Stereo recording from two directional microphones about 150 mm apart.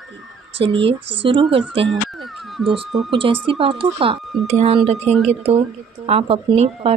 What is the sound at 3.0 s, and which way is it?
A woman's voice, 35° right (ahead or behind).